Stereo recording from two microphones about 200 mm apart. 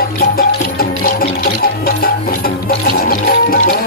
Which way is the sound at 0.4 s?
45° left (ahead or behind).